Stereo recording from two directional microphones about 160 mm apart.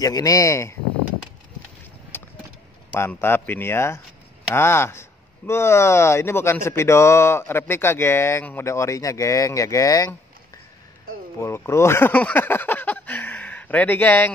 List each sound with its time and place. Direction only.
0.0 s speech: 20° left (ahead or behind)
2.1 s vehicle: 15° left (ahead or behind)
2.9 s speech: 10° left (ahead or behind)
11.3 s speech: 15° left (ahead or behind)